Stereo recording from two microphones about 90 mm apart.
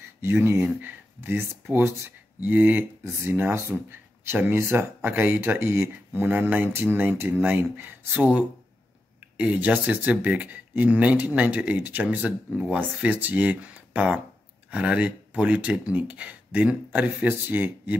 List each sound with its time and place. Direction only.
0.2 s speech: 25° right (ahead or behind)